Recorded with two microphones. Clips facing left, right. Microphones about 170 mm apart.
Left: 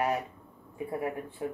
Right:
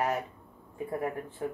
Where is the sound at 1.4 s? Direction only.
15° left (ahead or behind).